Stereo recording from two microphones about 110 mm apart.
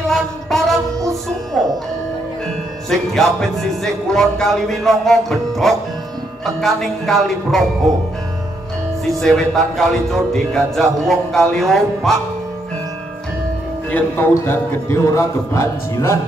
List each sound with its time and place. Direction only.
0.1 s a sound: centre (ahead or behind)
1.6 s music: 5° left (ahead or behind)
2.9 s music: 5° left (ahead or behind)
9.0 s music: 5° left (ahead or behind)
13.9 s a man's voice: 20° left (ahead or behind)